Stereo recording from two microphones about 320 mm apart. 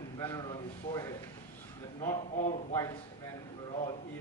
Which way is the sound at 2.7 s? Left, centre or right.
Centre.